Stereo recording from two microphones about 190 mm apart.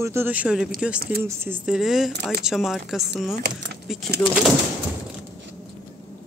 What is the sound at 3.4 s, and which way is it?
Speech, 65° right (ahead or behind).